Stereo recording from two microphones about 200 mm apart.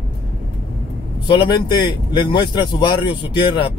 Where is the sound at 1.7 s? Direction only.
20° left (ahead or behind).